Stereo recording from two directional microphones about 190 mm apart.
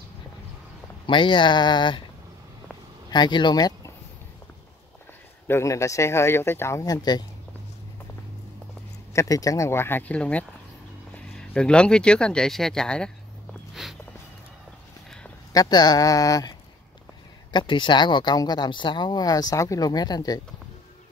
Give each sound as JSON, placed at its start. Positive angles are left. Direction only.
{"t": 1.0, "sound": "speech", "side_deg": 25}
{"t": 3.1, "sound": "speech", "side_deg": 25}
{"t": 5.5, "sound": "speech", "side_deg": 15}
{"t": 9.1, "sound": "speech", "side_deg": 15}
{"t": 15.5, "sound": "speech", "side_deg": 20}